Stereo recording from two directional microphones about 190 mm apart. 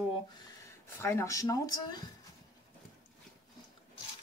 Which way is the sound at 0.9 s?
15° left (ahead or behind).